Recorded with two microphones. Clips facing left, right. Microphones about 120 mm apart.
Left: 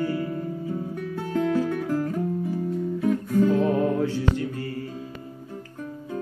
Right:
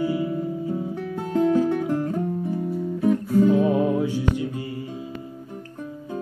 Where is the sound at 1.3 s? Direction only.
25° right (ahead or behind).